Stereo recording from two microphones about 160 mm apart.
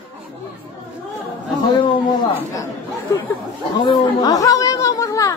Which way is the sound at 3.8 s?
30° left (ahead or behind).